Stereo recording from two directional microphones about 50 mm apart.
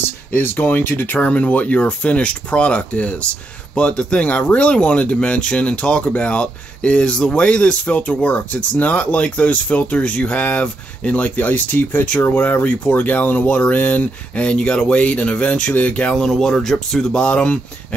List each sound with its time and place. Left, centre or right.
0.3 s speech: left
1.1 s speech: left
16.0 s speech: centre